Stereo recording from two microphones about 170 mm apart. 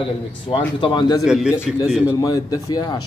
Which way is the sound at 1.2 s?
5° right (ahead or behind).